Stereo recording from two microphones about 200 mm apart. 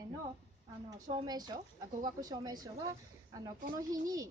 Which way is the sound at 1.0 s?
20° right (ahead or behind).